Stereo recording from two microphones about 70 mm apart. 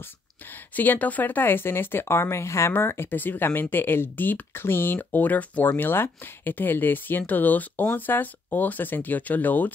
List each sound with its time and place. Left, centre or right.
0.7 s speech: left